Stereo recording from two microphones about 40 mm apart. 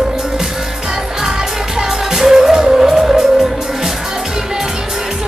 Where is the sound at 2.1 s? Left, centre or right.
Centre.